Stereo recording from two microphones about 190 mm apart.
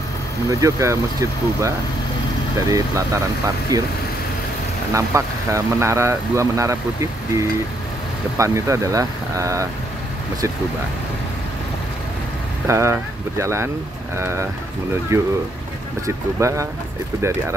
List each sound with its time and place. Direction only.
0.5 s speech: 15° right (ahead or behind)
2.7 s speech: 15° right (ahead or behind)
4.9 s speech: 15° right (ahead or behind)
12.6 s speech: 15° right (ahead or behind)
16.3 s speech: 15° right (ahead or behind)